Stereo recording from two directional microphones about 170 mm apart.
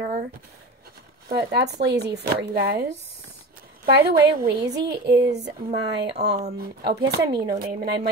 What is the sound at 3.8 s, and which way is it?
Speech, 60° right (ahead or behind).